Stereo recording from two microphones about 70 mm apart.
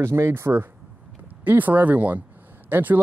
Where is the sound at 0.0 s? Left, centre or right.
Right.